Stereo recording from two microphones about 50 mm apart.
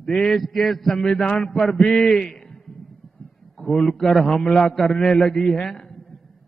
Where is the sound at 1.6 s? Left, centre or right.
Centre.